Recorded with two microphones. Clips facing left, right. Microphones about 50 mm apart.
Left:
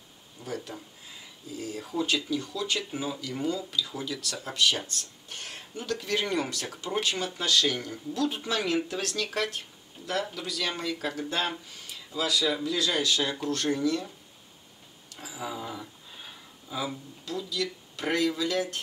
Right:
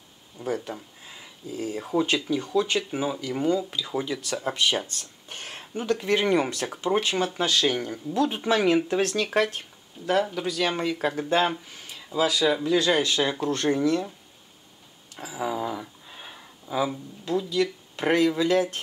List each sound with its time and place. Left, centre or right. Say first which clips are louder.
0.4 s speech: right 7 dB; centre
15.1 s a sound: right 7 dB; centre
17.2 s speech: right 8 dB; right